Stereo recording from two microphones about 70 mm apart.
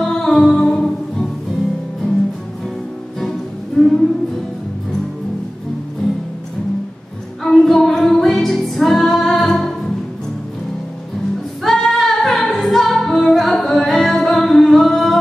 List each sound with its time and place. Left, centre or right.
0.0 s music: centre
3.8 s music: centre
7.4 s music: centre
11.6 s music: centre